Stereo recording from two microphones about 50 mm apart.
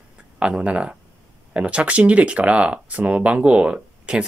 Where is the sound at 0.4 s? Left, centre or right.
Right.